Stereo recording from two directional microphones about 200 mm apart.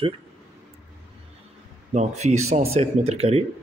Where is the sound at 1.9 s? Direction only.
35° right (ahead or behind).